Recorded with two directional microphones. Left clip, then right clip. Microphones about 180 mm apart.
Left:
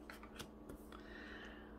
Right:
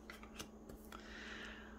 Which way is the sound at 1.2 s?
15° right (ahead or behind).